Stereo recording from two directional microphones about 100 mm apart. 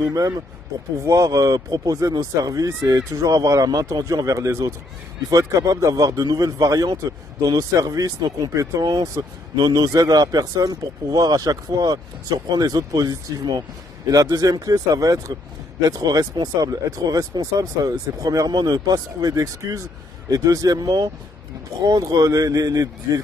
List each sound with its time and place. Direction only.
0.0 s speech: 35° right (ahead or behind)